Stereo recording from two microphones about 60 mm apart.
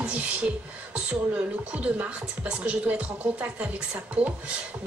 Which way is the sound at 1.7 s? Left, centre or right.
Right.